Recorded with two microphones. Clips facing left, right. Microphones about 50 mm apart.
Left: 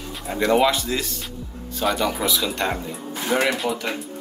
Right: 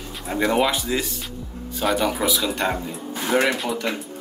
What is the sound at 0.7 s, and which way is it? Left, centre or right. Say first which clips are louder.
Speech: left 1 dB; centre.